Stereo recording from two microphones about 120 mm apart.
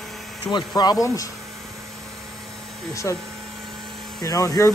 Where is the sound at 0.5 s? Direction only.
35° left (ahead or behind).